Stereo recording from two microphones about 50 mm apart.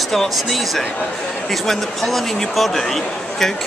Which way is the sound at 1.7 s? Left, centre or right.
Centre.